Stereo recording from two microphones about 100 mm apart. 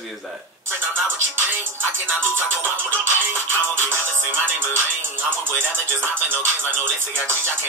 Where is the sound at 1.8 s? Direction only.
20° right (ahead or behind).